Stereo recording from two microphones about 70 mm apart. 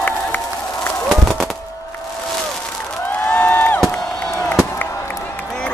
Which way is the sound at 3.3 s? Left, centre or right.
Left.